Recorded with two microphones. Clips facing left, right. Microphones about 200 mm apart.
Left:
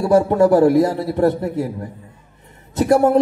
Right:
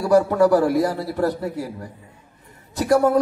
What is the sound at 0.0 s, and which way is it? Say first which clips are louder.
A man's voice: left 2 dB; 25° left (ahead or behind).